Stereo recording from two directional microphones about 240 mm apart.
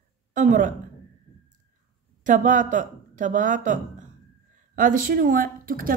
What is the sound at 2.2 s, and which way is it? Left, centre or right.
Speech, right.